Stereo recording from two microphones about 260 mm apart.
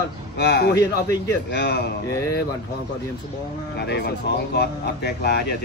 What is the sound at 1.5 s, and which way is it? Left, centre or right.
Speech, left.